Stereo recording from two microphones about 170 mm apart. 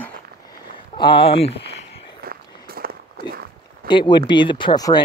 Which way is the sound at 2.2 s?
60° right (ahead or behind).